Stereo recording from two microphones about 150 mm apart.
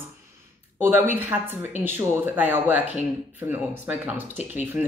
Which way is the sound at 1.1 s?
15° right (ahead or behind).